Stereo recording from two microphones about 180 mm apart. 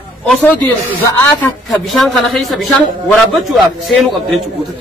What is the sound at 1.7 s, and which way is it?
A man's voice, centre (ahead or behind).